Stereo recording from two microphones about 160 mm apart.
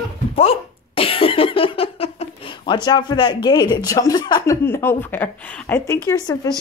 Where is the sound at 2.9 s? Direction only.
25° left (ahead or behind).